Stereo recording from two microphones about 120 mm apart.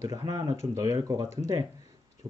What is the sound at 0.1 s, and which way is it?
Speech, 30° right (ahead or behind).